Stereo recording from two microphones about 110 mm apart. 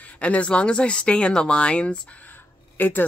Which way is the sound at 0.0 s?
15° left (ahead or behind).